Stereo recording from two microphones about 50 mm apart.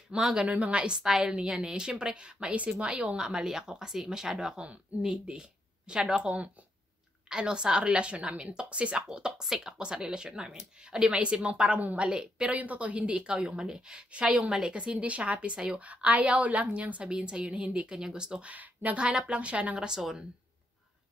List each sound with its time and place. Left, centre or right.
0.1 s a woman's voice: centre
0.5 s a woman's voice: right
12.1 s a woman's voice: centre
12.4 s a woman's voice: right
15.8 s a woman's voice: right
18.5 s a woman's voice: right